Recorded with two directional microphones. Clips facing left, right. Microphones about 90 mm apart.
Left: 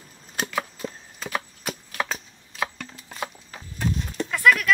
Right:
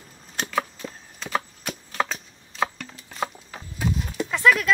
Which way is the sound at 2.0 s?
Centre (ahead or behind).